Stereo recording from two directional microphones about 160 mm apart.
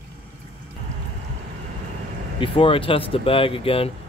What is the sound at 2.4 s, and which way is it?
Speech, 35° left (ahead or behind).